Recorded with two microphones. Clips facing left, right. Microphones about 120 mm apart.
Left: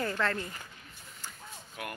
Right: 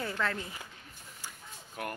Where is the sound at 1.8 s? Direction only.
40° right (ahead or behind).